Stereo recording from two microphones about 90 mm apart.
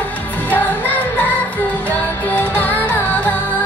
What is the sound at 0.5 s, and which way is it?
Music, 20° left (ahead or behind).